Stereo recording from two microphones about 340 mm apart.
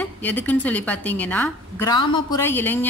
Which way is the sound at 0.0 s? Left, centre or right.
Centre.